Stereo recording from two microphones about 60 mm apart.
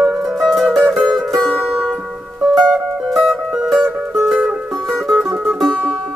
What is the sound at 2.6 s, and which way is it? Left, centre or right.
Music, centre.